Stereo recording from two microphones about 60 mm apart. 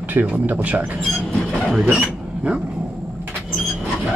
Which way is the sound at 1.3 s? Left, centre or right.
Centre.